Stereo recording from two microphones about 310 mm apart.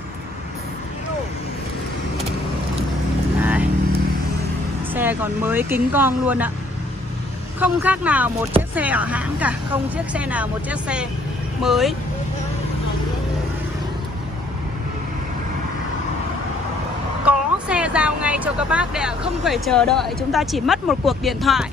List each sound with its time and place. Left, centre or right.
3.3 s vehicle: centre
4.9 s speech: centre
7.6 s speech: centre
17.2 s speech: centre